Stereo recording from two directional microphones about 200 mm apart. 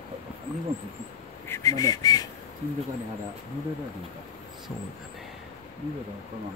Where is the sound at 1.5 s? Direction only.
15° left (ahead or behind).